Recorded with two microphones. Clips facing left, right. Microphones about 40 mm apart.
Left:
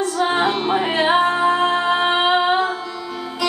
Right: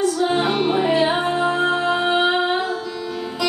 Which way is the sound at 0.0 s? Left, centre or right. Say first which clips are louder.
Even; left.